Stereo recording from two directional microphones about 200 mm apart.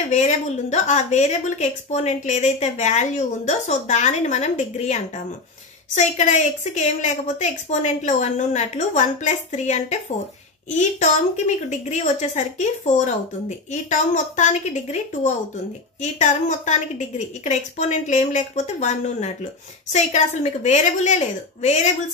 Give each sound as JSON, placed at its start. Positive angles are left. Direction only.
{"t": 0.1, "sound": "a woman's voice", "side_deg": 35}